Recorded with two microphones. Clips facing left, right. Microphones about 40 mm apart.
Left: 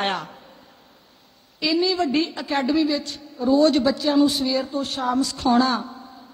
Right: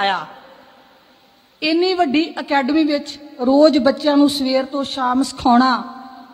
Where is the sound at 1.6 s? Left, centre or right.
Right.